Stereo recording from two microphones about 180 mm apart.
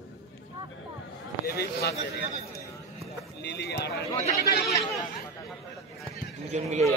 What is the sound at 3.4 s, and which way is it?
Run, 70° left (ahead or behind).